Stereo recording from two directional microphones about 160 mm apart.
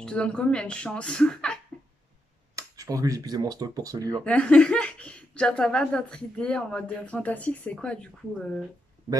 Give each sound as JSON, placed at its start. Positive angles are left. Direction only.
{"t": 0.0, "sound": "speech", "side_deg": 5}
{"t": 2.5, "sound": "speech", "side_deg": -20}
{"t": 4.2, "sound": "speech", "side_deg": 5}